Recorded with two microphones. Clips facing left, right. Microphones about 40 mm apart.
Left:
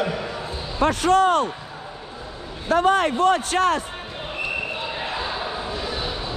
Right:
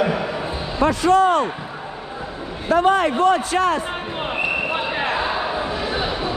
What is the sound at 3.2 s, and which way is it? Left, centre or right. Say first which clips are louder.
Speech: right 2 dB; left.